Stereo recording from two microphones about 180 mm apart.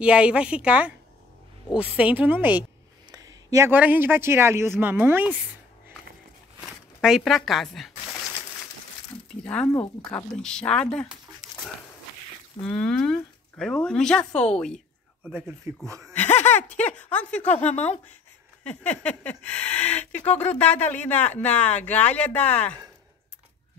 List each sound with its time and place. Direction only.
0.0 s a woman's voice: 5° right (ahead or behind)
7.0 s speech: centre (ahead or behind)
9.4 s speech: 5° left (ahead or behind)
12.6 s speech: 5° left (ahead or behind)
15.2 s a woman's voice: 10° right (ahead or behind)
16.1 s a sound: 10° left (ahead or behind)
16.5 s speech: 5° left (ahead or behind)
17.6 s speech: 40° left (ahead or behind)
18.6 s speech: 5° left (ahead or behind)